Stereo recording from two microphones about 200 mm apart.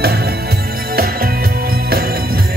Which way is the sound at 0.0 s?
50° right (ahead or behind).